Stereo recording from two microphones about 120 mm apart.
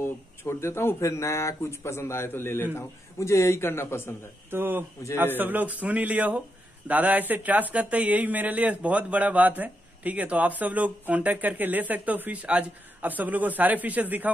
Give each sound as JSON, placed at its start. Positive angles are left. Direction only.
{"t": 0.0, "sound": "speech", "side_deg": 20}
{"t": 4.5, "sound": "speech", "side_deg": -15}